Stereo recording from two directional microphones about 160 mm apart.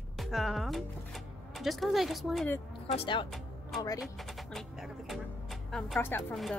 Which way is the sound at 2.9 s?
35° left (ahead or behind).